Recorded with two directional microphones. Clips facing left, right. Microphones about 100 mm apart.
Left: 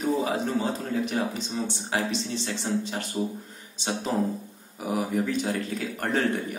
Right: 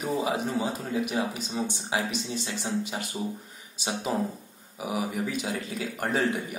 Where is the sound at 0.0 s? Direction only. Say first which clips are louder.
Left 2 dB; 15° right (ahead or behind).